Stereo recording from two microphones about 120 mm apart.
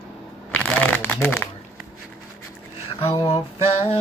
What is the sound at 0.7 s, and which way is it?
Crumpling, 15° left (ahead or behind).